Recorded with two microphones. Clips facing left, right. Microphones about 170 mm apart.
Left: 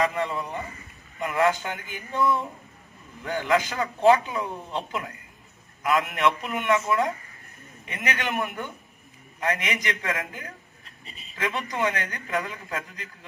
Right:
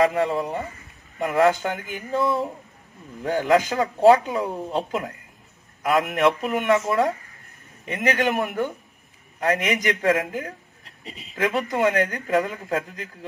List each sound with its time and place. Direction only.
0.0 s a woman's voice: 40° right (ahead or behind)
7.8 s a woman's voice: 40° right (ahead or behind)
11.1 s speech: 90° right
11.3 s a woman's voice: 45° right (ahead or behind)